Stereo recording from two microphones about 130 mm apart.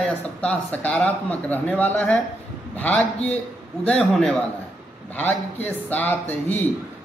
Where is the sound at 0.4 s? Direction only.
10° left (ahead or behind).